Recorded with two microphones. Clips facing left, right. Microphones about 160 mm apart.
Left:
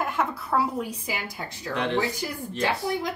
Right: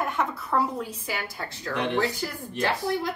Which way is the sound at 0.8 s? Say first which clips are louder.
Left 1 dB; 15° left (ahead or behind).